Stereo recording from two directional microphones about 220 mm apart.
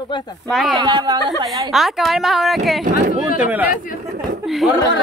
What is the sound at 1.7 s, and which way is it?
A woman's voice, centre (ahead or behind).